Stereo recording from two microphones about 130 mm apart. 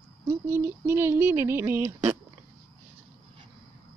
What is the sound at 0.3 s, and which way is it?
Speech, 20° right (ahead or behind).